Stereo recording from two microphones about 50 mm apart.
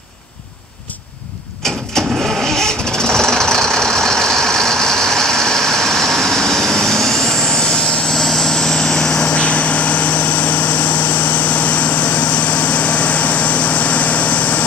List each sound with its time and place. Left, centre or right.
1.6 s vehicle: centre
2.2 s vehicle: centre
2.5 s vehicle: centre; by 14.6 s left